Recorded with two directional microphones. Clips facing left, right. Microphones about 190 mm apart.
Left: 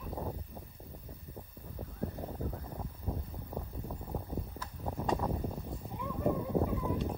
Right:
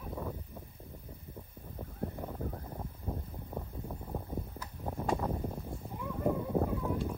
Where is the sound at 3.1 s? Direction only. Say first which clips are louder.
Even; 5° right (ahead or behind).